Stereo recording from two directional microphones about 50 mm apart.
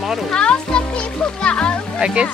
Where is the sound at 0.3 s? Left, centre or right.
Centre.